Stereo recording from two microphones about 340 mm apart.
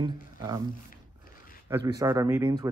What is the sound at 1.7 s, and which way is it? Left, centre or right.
Speech, centre.